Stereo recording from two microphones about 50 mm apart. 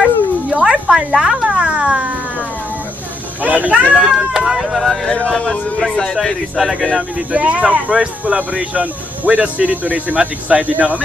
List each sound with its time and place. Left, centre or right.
0.0 s cat: centre
1.5 s a sound: right
3.4 s speech: right
3.9 s speech: centre
5.0 s speech: centre
5.8 s speech: centre
7.3 s speech: right